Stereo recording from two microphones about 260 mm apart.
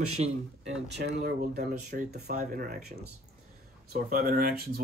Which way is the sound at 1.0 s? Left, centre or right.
Right.